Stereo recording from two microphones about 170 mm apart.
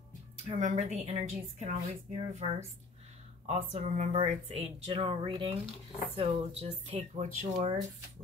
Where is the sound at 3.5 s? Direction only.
40° right (ahead or behind).